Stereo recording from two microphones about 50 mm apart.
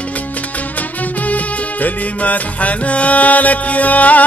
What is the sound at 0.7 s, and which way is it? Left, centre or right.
Music, left.